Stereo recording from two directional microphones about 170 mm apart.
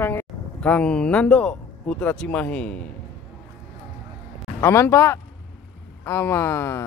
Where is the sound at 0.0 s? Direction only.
10° left (ahead or behind).